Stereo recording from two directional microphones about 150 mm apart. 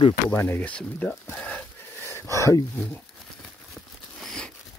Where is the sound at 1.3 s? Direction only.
10° left (ahead or behind).